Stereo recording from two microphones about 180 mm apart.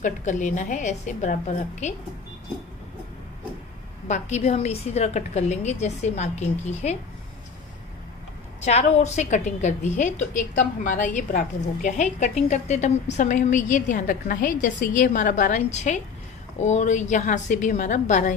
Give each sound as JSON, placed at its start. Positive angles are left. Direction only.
{"t": 0.0, "sound": "a woman's voice", "side_deg": 45}
{"t": 4.1, "sound": "a woman's voice", "side_deg": 40}
{"t": 8.5, "sound": "a woman's voice", "side_deg": 35}